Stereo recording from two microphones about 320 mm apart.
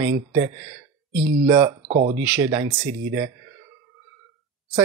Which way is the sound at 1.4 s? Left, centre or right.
Centre.